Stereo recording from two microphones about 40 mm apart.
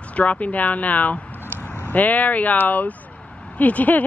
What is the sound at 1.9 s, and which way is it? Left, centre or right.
Speech, left.